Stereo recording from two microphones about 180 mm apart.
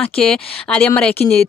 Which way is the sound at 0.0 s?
5° left (ahead or behind).